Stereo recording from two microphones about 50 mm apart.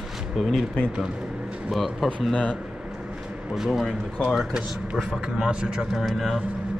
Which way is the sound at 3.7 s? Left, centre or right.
Centre.